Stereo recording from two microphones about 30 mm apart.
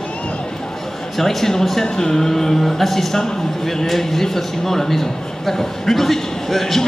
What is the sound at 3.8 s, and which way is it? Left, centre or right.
A man's voice, centre.